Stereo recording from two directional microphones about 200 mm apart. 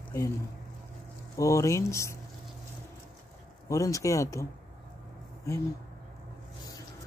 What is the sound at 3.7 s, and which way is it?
Speech, 15° left (ahead or behind).